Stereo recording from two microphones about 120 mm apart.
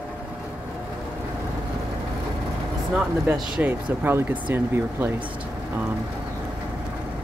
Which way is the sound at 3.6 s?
15° right (ahead or behind).